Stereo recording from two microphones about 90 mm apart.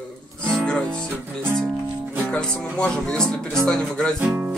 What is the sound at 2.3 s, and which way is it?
Speech, 10° left (ahead or behind).